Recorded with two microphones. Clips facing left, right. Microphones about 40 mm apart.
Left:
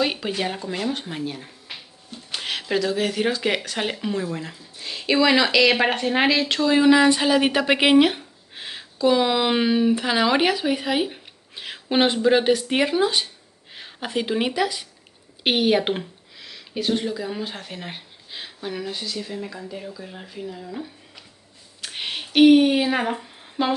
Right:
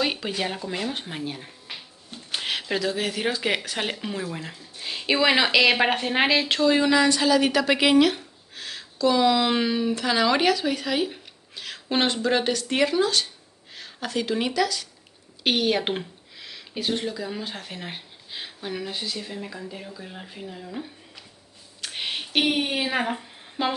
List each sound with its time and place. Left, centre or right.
0.0 s speech: centre
6.9 s a woman's voice: left
15.8 s speech: centre
21.8 s a sound: centre